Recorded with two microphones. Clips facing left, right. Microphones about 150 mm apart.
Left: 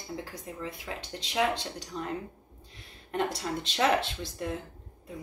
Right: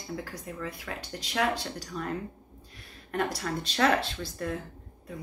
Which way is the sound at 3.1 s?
25° left (ahead or behind).